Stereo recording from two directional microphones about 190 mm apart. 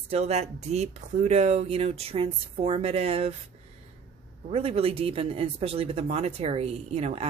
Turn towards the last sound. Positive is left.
turn(degrees=-35)  # may be behind; listen again after turning